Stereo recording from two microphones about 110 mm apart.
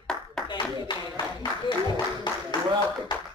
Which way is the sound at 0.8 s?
45° left (ahead or behind).